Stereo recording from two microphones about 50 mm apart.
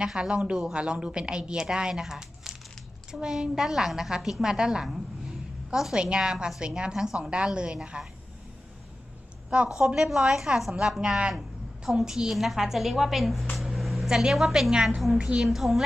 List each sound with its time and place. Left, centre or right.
0.0 s a woman's voice: centre
5.9 s a woman's voice: centre
9.8 s a woman's voice: centre
13.6 s a sound: centre
14.3 s a woman's voice: centre
15.1 s a woman's voice: right
15.4 s a woman's voice: centre